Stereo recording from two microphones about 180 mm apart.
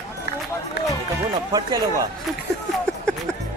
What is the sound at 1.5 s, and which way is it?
Speech, 20° right (ahead or behind).